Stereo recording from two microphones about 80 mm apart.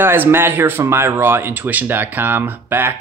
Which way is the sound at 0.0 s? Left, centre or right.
Right.